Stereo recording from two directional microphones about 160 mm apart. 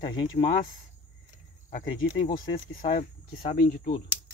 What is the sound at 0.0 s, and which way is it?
Speech, 25° left (ahead or behind).